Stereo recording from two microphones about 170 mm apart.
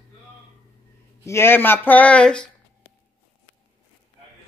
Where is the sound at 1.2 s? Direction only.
15° left (ahead or behind).